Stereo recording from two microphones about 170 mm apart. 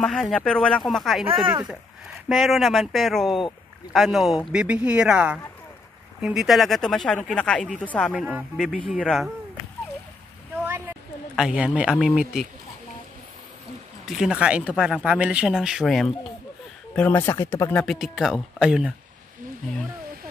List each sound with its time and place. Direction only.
0.0 s speech: 5° left (ahead or behind)
1.4 s speech: 25° right (ahead or behind)
2.2 s speech: centre (ahead or behind)
8.1 s speech: 5° right (ahead or behind)
11.3 s speech: 5° right (ahead or behind)
14.0 s speech: centre (ahead or behind)
17.9 s speech: centre (ahead or behind)